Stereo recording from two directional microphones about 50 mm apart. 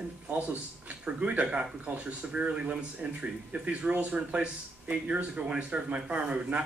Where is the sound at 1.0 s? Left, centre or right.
Right.